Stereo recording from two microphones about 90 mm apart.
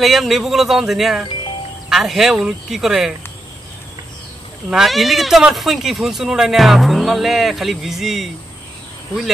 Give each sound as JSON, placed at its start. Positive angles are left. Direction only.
{"t": 0.0, "sound": "speech", "side_deg": 0}
{"t": 4.6, "sound": "speech", "side_deg": -5}